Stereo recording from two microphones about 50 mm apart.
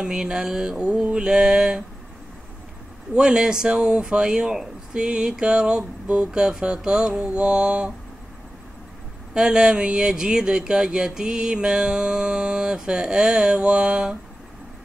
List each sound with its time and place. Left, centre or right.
0.0 s speech: centre
3.2 s speech: centre
9.3 s speech: centre